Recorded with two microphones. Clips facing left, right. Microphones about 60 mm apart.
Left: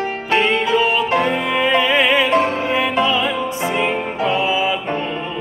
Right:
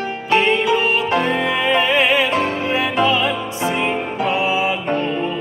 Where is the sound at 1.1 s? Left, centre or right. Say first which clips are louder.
Left 1 dB; left.